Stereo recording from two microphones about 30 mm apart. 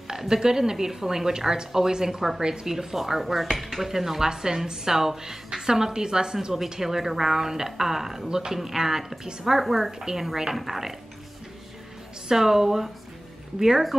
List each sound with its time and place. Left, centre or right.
0.1 s a woman's voice: centre
6.8 s speech: centre
12.3 s speech: centre